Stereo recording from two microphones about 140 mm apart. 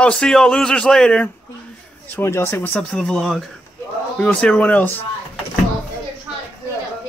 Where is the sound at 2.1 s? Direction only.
15° left (ahead or behind).